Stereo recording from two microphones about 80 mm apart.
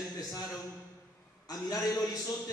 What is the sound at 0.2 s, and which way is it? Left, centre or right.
A man's voice, left.